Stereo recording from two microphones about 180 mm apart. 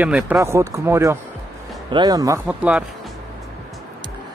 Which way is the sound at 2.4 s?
5° right (ahead or behind).